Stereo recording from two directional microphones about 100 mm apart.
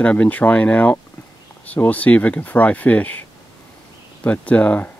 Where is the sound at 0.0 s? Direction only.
15° left (ahead or behind).